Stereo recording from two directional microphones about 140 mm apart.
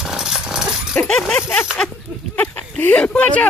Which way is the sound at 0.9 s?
5° left (ahead or behind).